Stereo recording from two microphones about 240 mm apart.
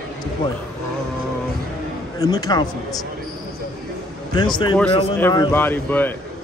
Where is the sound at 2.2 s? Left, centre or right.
Centre.